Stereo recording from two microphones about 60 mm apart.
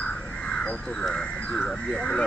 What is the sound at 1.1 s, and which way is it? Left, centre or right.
Speech, centre.